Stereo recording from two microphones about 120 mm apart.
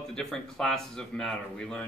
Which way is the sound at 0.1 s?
5° left (ahead or behind).